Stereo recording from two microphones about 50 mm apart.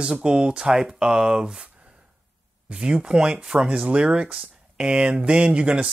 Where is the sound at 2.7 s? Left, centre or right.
Right.